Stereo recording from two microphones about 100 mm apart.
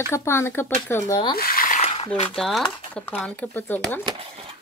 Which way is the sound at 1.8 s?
90° left.